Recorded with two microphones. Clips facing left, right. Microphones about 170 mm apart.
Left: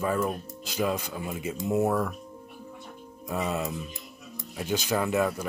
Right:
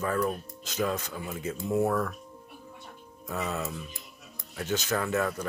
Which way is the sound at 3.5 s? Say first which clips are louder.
Left 3 dB; 15° left (ahead or behind).